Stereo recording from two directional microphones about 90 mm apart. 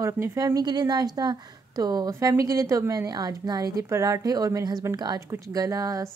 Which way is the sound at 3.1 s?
45° right (ahead or behind).